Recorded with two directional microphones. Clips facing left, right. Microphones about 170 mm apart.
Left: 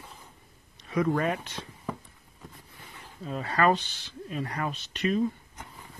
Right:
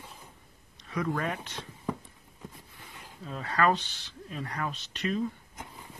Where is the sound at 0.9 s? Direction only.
20° left (ahead or behind).